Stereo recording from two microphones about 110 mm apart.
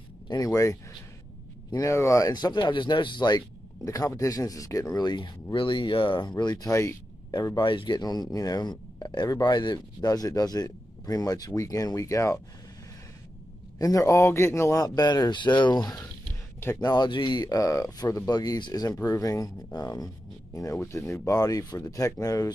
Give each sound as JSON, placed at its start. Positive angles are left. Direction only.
{"t": 0.3, "sound": "speech", "side_deg": 35}
{"t": 4.9, "sound": "speech", "side_deg": 40}
{"t": 6.3, "sound": "speech", "side_deg": 35}
{"t": 7.3, "sound": "speech", "side_deg": 40}
{"t": 13.7, "sound": "speech", "side_deg": 30}